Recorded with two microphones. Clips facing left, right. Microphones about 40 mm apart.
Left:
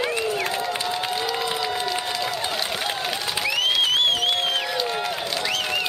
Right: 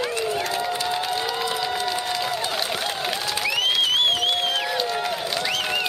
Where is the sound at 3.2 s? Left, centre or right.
Centre.